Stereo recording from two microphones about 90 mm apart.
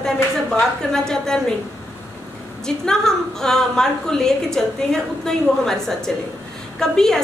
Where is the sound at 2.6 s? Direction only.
5° left (ahead or behind).